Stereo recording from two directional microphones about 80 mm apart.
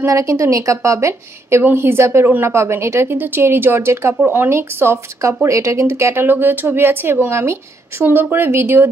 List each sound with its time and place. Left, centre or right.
0.0 s a woman's voice: right
1.6 s a woman's voice: right